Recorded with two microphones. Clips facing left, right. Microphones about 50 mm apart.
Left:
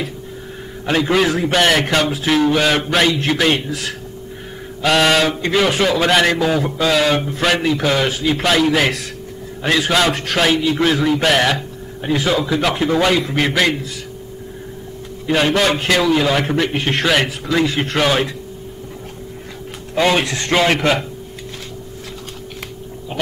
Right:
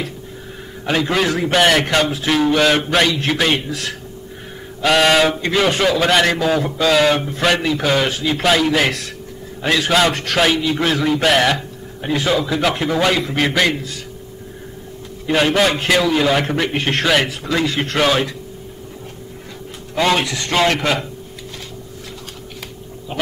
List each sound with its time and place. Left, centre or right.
0.8 s a man's voice: centre
15.2 s a man's voice: centre
20.5 s a man's voice: left